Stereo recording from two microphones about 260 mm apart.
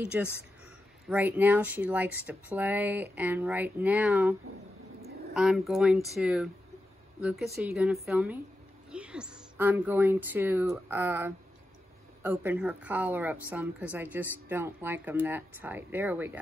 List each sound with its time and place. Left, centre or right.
0.0 s a woman's voice: centre